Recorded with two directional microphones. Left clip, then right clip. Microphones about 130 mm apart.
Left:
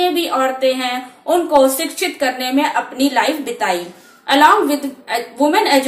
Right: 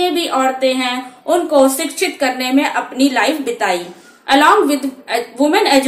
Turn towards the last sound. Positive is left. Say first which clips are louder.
# right 1 dB
turn(degrees=-25)  # may be behind; listen again after turning